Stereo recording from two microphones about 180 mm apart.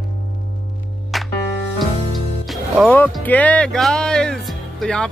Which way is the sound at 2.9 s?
10° left (ahead or behind).